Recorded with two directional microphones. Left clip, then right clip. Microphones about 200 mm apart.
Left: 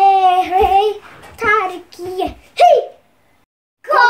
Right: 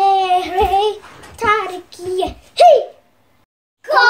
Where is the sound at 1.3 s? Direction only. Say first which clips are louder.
Left 1 dB; 15° left (ahead or behind).